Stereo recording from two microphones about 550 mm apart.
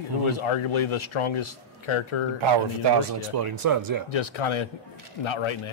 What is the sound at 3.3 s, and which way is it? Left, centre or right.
Speech, right.